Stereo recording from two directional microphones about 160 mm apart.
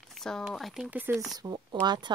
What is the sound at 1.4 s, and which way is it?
Speech, 25° right (ahead or behind).